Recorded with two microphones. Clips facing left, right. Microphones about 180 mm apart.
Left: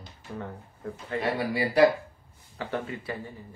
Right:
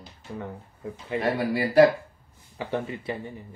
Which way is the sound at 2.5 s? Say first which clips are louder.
Right 3 dB; 15° right (ahead or behind).